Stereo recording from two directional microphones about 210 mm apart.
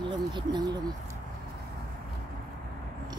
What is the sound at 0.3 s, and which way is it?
Speech, 20° right (ahead or behind).